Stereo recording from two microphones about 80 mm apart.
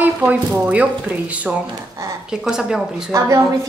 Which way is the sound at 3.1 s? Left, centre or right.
Right.